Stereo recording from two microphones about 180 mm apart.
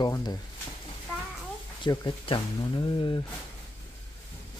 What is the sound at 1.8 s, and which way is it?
Speech, 25° left (ahead or behind).